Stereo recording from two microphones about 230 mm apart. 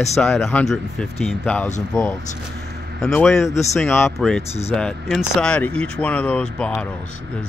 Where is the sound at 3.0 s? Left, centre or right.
Centre.